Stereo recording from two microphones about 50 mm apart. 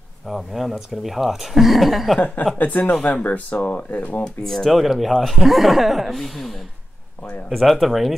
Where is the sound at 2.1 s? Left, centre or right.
Left.